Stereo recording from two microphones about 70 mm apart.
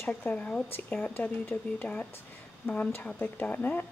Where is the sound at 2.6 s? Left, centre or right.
Left.